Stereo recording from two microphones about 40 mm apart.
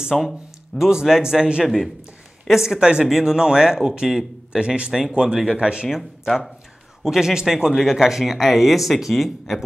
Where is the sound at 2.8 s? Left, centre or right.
Centre.